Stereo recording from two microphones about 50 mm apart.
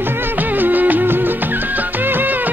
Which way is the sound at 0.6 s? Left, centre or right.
Right.